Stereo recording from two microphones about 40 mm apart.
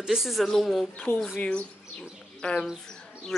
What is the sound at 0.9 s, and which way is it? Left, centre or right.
Speech, left.